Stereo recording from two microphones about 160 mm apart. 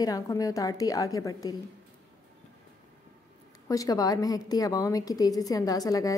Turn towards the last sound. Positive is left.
turn(degrees=20)  # may be behind; listen again after turning